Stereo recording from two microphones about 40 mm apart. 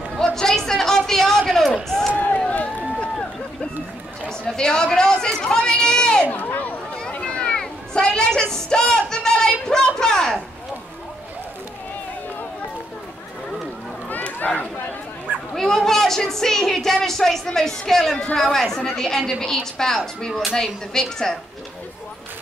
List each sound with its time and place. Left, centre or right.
0.2 s a sound: centre
2.1 s run: left
4.3 s chatter: centre
6.3 s a sound: left
7.1 s a sound: left
14.4 s speech: left
15.5 s a woman's voice: centre
18.1 s speech: left
18.4 s a woman's voice: centre